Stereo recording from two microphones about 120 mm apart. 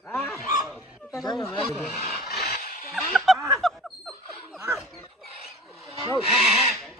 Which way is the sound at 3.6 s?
5° left (ahead or behind).